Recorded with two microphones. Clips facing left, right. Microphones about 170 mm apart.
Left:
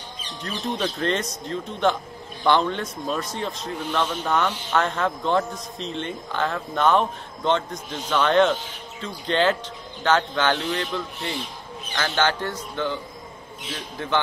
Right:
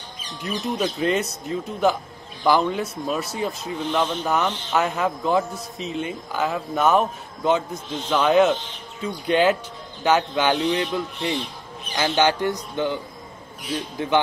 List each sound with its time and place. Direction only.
0.4 s a man's voice: 10° right (ahead or behind)